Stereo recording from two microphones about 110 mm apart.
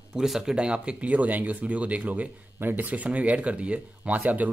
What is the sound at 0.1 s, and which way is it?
Speech, 5° right (ahead or behind).